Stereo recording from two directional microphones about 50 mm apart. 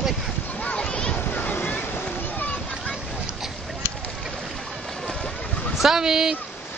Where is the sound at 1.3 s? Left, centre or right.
Left.